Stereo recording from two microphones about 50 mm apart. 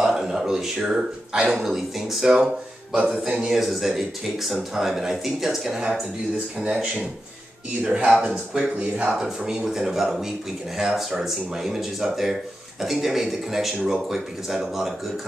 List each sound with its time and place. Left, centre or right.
0.0 s speech: centre
6.6 s speech: centre